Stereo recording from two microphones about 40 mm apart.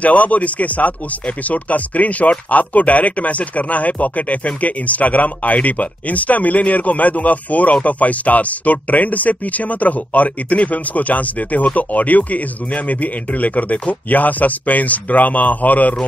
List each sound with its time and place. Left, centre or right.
0.0 s speech: left